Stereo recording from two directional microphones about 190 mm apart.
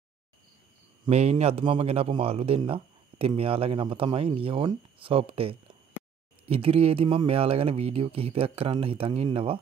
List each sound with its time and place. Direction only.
1.0 s speech: 30° right (ahead or behind)